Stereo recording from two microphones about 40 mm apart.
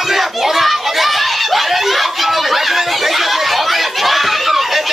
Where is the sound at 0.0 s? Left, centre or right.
Centre.